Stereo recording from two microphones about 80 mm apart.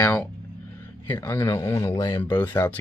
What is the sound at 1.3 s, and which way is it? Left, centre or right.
Speech, left.